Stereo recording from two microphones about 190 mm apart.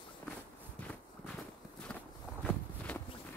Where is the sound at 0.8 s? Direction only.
5° left (ahead or behind).